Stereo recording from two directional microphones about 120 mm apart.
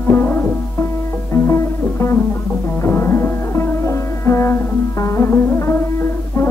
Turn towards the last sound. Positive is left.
turn(degrees=20)  # may be behind; listen again after turning